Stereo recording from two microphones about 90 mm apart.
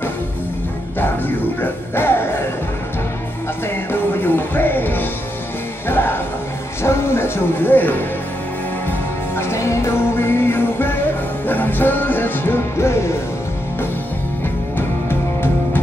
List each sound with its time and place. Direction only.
0.9 s music: 20° left (ahead or behind)
3.6 s music: 25° left (ahead or behind)
6.8 s a sound: 25° left (ahead or behind)
9.4 s music: 30° left (ahead or behind)
14.8 s music: 25° left (ahead or behind)